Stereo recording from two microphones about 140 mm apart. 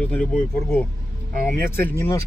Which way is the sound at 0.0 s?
10° left (ahead or behind).